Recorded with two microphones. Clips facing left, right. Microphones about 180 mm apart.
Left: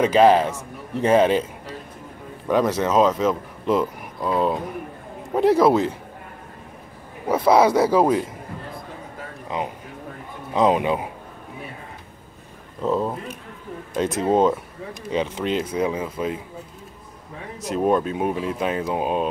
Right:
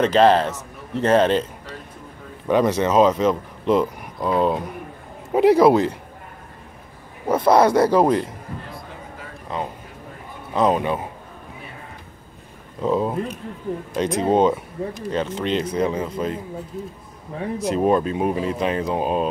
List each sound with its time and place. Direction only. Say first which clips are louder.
0.0 s speech: even; 10° left (ahead or behind)
7.2 s speech: right 1 dB; 5° left (ahead or behind)
9.5 s speech: even; 15° left (ahead or behind)
12.8 s speech: right 2 dB; centre (ahead or behind)
15.0 s speech: left 1 dB; 10° left (ahead or behind)
17.6 s speech: right 1 dB; centre (ahead or behind)